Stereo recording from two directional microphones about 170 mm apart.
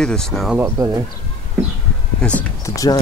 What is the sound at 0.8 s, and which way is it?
Speech, 20° right (ahead or behind).